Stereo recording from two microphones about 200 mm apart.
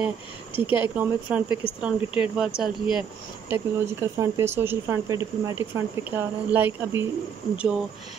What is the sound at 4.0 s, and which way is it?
Speech, 15° right (ahead or behind).